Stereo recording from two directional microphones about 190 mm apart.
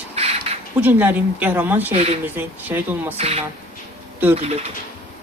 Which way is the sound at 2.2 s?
10° right (ahead or behind).